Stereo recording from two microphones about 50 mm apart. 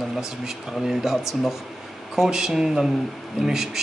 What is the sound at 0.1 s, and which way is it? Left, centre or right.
Speech, centre.